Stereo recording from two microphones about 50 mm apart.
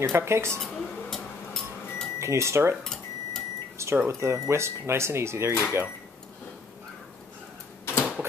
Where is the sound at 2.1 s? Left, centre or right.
Right.